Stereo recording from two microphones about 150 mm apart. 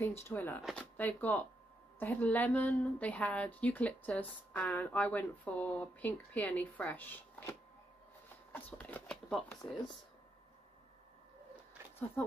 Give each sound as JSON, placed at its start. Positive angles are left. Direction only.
{"t": 0.0, "sound": "a woman's voice", "side_deg": 15}
{"t": 12.2, "sound": "a woman's voice", "side_deg": 15}